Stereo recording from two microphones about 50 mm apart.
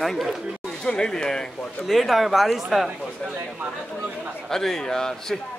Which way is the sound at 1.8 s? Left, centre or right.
Centre.